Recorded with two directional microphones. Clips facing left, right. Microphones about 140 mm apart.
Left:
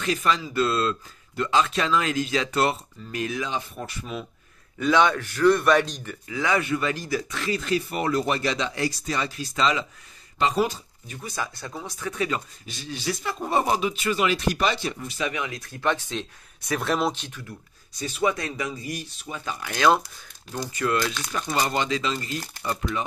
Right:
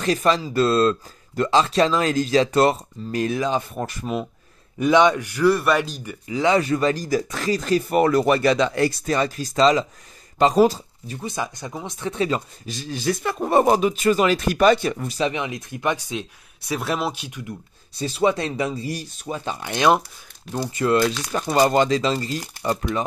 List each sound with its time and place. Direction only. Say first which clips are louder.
0.0 s speech: right 5 dB; 35° right (ahead or behind)
4.7 s speech: right 4 dB; 20° right (ahead or behind)
6.2 s speech: right 6 dB; 25° right (ahead or behind)
6.6 s speech: right 5 dB; 35° right (ahead or behind)
11.3 s speech: right 1 dB; 20° right (ahead or behind)
12.6 s speech: right 8 dB; 40° right (ahead or behind)
15.1 s speech: right 5 dB; 25° right (ahead or behind)
17.9 s speech: right 5 dB; 30° right (ahead or behind)
21.3 s speech: right 9 dB; 40° right (ahead or behind)